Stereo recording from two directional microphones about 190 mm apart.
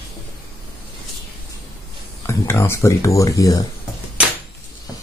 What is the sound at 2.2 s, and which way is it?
Speech, 15° left (ahead or behind).